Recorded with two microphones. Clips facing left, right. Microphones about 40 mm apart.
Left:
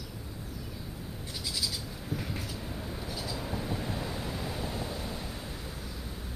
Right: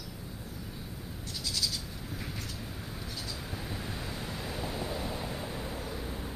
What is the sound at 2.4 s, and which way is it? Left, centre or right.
Vehicle, centre.